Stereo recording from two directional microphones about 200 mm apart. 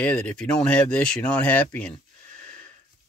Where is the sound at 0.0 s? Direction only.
5° left (ahead or behind).